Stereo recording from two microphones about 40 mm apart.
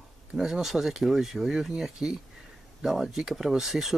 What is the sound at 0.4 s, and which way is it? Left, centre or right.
Speech, centre.